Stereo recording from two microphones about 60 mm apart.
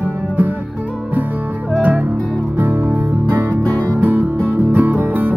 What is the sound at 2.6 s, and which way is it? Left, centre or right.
Music, right.